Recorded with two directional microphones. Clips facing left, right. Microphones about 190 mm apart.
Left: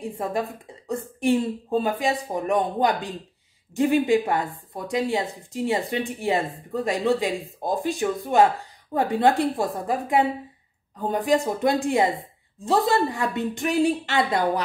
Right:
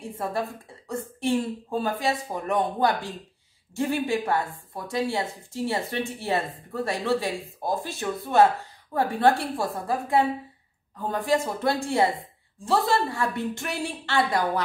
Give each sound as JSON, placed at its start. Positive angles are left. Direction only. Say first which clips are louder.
{"t": 0.0, "sound": "a woman's voice", "louder": "left 2 dB", "side_deg": 15}